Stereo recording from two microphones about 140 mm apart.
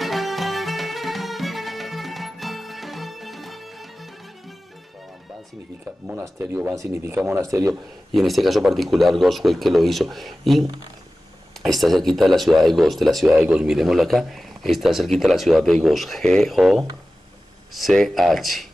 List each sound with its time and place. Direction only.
0.0 s music: centre (ahead or behind)
6.4 s speech: 15° right (ahead or behind)
8.1 s a man's voice: centre (ahead or behind)
11.6 s a man's voice: centre (ahead or behind)